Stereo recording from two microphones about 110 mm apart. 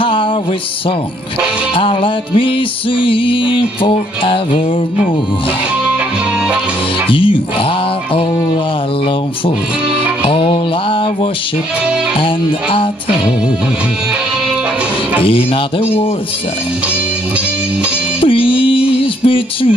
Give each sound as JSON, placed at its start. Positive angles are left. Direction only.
{"t": 0.0, "sound": "a sound", "side_deg": 50}
{"t": 1.8, "sound": "music", "side_deg": 55}
{"t": 7.1, "sound": "music", "side_deg": 55}
{"t": 10.2, "sound": "mantra", "side_deg": 55}
{"t": 12.2, "sound": "music", "side_deg": 50}
{"t": 15.2, "sound": "music", "side_deg": 55}
{"t": 18.2, "sound": "a sound", "side_deg": 55}